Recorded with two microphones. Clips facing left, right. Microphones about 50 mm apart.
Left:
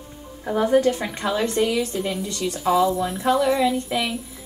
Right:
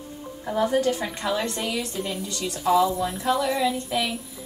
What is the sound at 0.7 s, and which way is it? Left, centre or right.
Speech, left.